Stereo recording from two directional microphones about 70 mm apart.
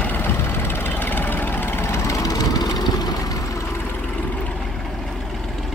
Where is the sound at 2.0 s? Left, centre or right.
Left.